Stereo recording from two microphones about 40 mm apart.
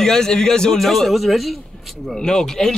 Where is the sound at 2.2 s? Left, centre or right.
Centre.